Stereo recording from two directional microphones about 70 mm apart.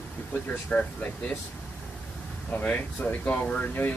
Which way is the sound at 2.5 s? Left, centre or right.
Left.